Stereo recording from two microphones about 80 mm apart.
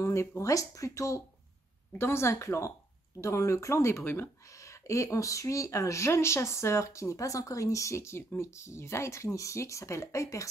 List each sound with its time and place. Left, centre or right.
0.0 s speech: left
4.6 s speech: left